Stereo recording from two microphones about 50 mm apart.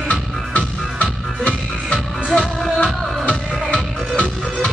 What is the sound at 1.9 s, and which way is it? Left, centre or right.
Music, centre.